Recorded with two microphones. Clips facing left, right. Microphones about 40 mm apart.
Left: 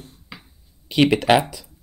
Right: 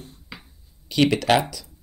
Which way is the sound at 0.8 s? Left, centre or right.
Centre.